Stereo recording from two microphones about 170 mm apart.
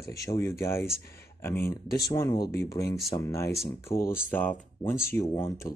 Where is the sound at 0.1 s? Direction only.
20° left (ahead or behind).